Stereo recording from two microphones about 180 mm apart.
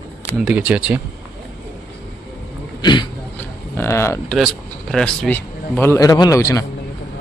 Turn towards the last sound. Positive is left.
turn(degrees=15)  # may be behind; listen again after turning